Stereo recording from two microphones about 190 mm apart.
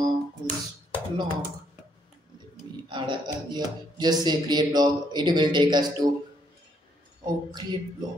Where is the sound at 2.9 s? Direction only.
25° right (ahead or behind).